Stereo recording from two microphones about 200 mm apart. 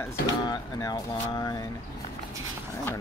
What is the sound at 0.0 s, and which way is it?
Speech, 15° left (ahead or behind).